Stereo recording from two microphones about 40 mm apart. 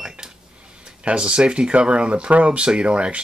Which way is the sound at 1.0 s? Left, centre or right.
Right.